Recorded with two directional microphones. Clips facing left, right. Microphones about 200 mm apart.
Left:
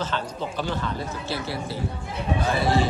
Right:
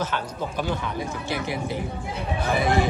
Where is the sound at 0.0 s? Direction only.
10° right (ahead or behind).